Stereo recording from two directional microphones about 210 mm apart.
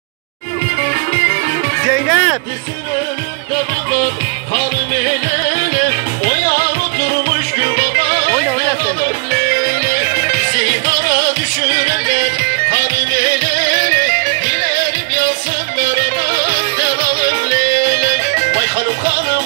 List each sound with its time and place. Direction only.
1.9 s music: centre (ahead or behind)
7.5 s music: 45° left (ahead or behind)
11.7 s music: 40° left (ahead or behind)